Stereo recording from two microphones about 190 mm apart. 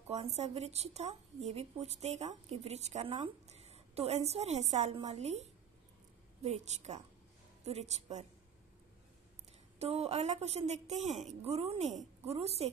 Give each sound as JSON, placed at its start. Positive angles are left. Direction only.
{"t": 0.1, "sound": "a woman's voice", "side_deg": -35}
{"t": 9.8, "sound": "a woman's voice", "side_deg": -30}